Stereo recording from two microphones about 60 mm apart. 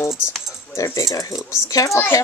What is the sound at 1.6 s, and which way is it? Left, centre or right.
Speech, left.